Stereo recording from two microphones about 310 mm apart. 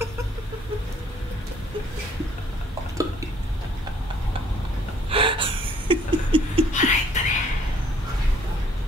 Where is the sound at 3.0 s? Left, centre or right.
Centre.